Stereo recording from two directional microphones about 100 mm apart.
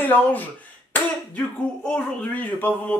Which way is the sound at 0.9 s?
10° left (ahead or behind).